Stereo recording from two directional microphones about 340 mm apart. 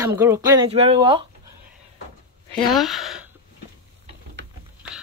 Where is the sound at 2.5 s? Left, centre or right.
Centre.